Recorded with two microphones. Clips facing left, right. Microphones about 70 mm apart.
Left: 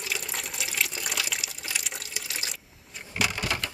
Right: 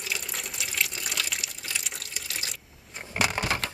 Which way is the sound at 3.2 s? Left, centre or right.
Right.